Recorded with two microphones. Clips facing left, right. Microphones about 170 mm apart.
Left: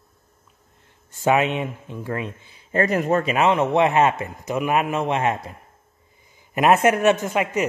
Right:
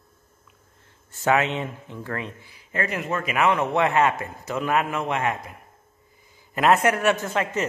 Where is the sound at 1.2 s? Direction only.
15° left (ahead or behind); by 3.3 s 40° left (ahead or behind).